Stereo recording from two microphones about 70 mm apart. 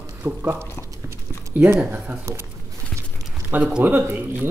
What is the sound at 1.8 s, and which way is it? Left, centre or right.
Speech, right.